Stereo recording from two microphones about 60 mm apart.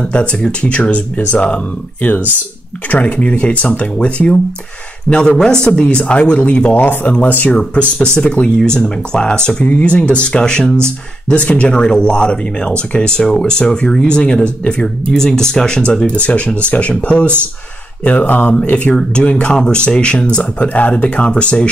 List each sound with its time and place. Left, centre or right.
0.0 s speech: centre
5.4 s speech: centre